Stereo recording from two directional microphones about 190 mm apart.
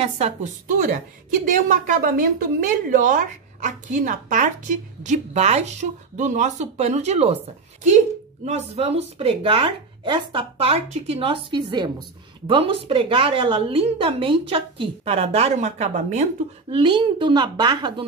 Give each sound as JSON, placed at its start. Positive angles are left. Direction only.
{"t": 0.0, "sound": "a woman's voice", "side_deg": -35}
{"t": 8.5, "sound": "a woman's voice", "side_deg": -35}
{"t": 16.7, "sound": "a woman's voice", "side_deg": -25}